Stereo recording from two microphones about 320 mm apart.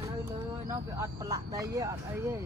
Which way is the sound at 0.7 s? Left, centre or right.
Centre.